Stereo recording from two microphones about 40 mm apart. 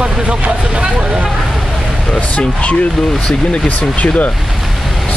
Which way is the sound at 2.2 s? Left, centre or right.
Left.